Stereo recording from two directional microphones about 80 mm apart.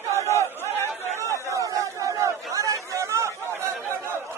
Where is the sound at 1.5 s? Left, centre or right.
Right.